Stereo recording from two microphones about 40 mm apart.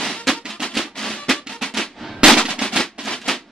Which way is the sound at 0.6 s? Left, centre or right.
Centre.